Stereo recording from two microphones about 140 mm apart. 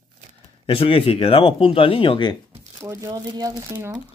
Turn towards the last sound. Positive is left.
turn(degrees=-30)  # may be behind; listen again after turning